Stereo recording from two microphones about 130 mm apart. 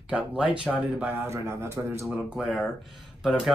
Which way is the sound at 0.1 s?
5° right (ahead or behind).